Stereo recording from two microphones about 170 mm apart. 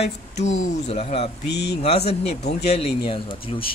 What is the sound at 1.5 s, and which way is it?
Speech, 85° left.